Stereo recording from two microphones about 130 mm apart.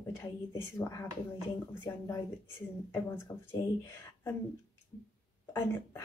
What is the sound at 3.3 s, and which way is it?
Speech, 25° left (ahead or behind).